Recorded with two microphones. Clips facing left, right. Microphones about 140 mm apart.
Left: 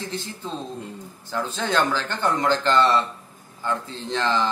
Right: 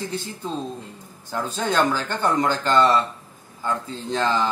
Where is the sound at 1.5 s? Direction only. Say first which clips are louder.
Right 2 dB; 15° right (ahead or behind).